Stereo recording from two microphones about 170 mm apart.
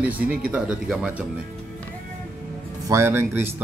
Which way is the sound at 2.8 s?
15° right (ahead or behind).